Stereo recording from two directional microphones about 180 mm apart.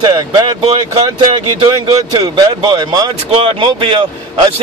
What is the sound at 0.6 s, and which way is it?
Speech, 35° right (ahead or behind).